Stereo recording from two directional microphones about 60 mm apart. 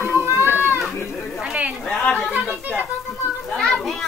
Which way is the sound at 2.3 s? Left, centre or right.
Right.